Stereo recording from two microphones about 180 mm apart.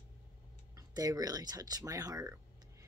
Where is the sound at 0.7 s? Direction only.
20° right (ahead or behind).